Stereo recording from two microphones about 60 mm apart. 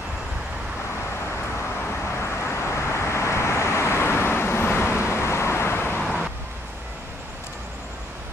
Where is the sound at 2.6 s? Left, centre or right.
Left.